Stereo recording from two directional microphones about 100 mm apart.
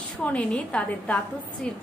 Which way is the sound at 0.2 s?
10° left (ahead or behind).